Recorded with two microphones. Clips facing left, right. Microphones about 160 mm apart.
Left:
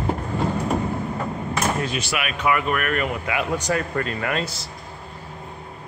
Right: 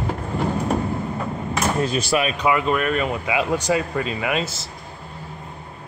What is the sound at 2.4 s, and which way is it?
Speech, 20° right (ahead or behind).